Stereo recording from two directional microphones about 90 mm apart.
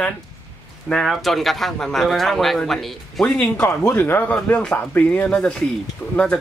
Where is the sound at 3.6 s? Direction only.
25° left (ahead or behind).